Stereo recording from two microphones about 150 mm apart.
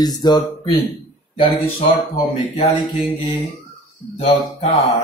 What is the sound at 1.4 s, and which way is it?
Speech, 35° left (ahead or behind).